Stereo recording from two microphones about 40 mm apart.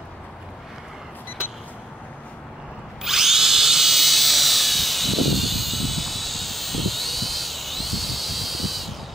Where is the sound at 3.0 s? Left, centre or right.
Centre.